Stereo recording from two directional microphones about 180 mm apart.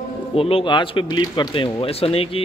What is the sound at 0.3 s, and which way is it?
Speech, 30° left (ahead or behind).